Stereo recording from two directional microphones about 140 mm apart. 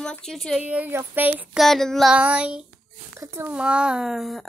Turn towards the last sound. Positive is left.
turn(degrees=0)  # may be behind; listen again after turning